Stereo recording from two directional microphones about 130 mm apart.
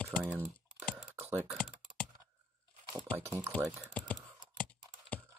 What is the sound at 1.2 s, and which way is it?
Computer keyboard, 20° right (ahead or behind).